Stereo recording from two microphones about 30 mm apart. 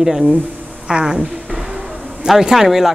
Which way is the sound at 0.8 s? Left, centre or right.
Right.